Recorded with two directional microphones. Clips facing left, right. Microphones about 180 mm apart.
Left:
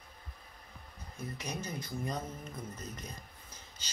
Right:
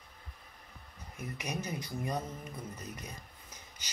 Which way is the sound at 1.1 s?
15° right (ahead or behind).